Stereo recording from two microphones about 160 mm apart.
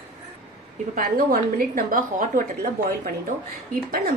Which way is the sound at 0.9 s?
65° right (ahead or behind).